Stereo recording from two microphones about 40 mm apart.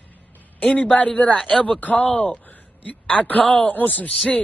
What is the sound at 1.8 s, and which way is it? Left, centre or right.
A man's voice, left.